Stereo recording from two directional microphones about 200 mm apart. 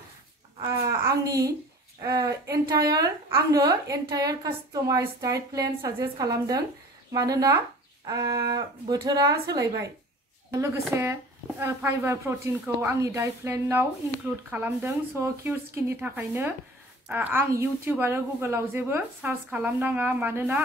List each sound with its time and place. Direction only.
0.6 s babbling: 15° right (ahead or behind)
2.0 s a woman's voice: 15° right (ahead or behind)